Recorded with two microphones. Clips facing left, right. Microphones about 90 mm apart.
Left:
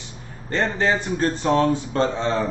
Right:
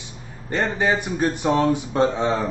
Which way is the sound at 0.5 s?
15° right (ahead or behind).